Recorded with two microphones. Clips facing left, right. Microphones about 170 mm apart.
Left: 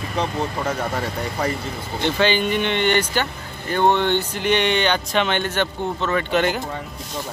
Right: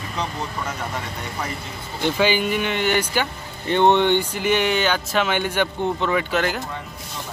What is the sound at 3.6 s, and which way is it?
Speech, 20° right (ahead or behind).